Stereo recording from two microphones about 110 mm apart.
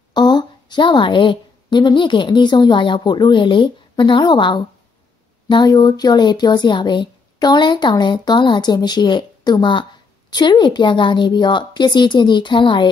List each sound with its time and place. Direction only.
0.1 s a woman's voice: 40° left (ahead or behind)